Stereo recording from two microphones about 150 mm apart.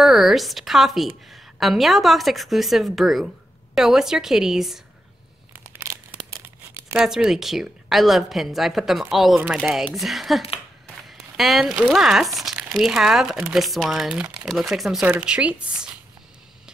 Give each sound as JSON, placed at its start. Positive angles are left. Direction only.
{"t": 0.0, "sound": "a woman's voice", "side_deg": 0}
{"t": 5.5, "sound": "crumpling", "side_deg": -15}
{"t": 6.7, "sound": "a sound", "side_deg": -20}
{"t": 7.1, "sound": "a woman's voice", "side_deg": -5}
{"t": 11.1, "sound": "a sound", "side_deg": 0}
{"t": 11.9, "sound": "a woman's voice", "side_deg": -5}